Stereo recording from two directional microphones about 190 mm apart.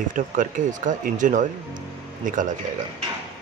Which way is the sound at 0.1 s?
45° right (ahead or behind).